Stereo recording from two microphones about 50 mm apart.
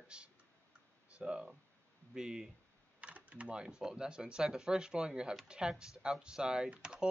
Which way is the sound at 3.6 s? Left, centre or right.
Centre.